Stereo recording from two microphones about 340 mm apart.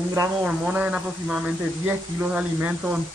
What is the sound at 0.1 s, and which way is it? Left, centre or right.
Speech, centre.